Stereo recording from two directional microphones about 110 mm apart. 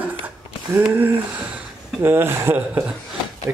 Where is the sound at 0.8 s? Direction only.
15° right (ahead or behind).